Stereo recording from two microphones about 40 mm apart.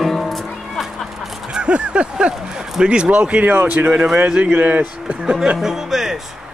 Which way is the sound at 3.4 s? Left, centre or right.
Right.